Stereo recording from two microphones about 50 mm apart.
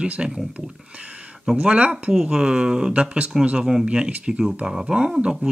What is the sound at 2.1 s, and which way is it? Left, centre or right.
Speech, centre.